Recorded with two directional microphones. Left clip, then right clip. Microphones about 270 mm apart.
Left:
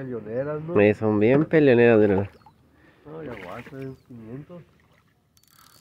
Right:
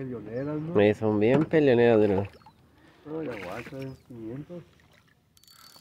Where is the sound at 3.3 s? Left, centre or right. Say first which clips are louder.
Even; centre.